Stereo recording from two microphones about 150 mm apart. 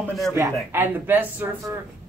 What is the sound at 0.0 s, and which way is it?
Speech, centre (ahead or behind).